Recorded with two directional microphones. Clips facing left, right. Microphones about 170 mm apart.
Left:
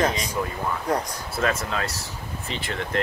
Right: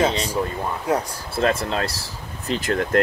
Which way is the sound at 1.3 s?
30° right (ahead or behind).